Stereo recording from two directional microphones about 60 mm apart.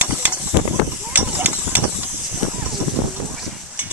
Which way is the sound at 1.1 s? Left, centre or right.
Right.